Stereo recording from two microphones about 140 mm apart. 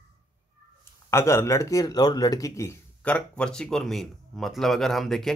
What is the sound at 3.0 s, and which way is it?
Speech, 10° left (ahead or behind).